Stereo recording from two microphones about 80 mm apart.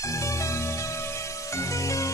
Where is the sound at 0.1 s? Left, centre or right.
Left.